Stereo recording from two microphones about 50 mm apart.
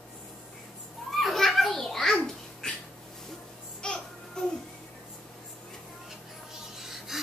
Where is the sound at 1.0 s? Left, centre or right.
Centre.